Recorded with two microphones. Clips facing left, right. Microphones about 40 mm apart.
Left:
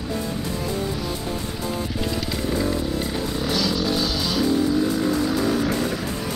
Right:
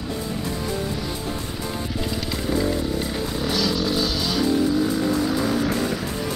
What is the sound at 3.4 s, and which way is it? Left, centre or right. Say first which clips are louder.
Vehicle: right 1 dB; centre.